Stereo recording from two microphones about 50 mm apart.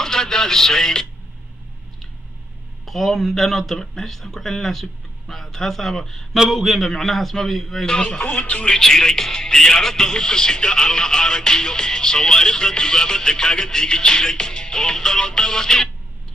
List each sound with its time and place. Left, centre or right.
0.0 s a man's voice: centre
2.8 s speech: centre
6.3 s speech: centre
7.8 s speech: centre
8.3 s speech: left
8.6 s speech: centre